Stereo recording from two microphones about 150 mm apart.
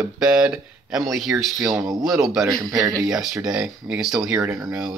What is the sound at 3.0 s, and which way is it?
Speech, centre (ahead or behind).